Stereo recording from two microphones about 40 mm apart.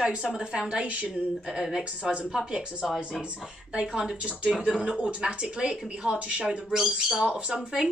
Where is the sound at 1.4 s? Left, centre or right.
Centre.